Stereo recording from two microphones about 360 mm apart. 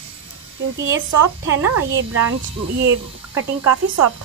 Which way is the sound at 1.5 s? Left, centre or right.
Right.